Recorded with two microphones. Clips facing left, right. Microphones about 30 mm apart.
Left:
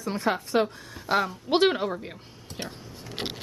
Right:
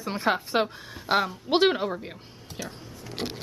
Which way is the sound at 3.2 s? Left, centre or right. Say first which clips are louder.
Even; left.